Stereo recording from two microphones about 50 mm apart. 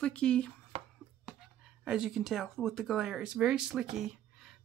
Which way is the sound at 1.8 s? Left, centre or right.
Centre.